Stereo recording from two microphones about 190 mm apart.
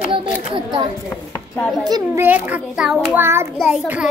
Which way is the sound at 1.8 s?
15° right (ahead or behind).